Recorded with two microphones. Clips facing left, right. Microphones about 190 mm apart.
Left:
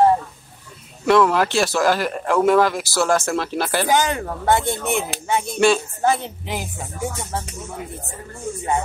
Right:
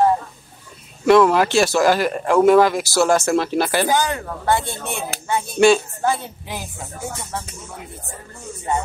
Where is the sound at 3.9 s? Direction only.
20° left (ahead or behind).